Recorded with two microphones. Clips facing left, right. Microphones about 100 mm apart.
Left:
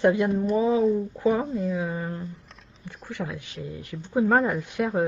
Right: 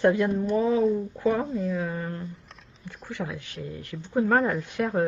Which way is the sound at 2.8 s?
10° left (ahead or behind).